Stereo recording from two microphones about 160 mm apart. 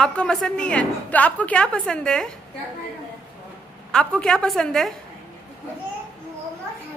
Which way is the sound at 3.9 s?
5° left (ahead or behind).